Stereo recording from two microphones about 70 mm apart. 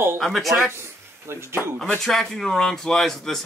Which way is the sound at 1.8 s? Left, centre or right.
Centre.